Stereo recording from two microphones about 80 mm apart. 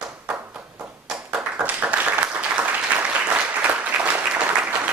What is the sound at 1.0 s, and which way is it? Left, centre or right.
Applause, centre.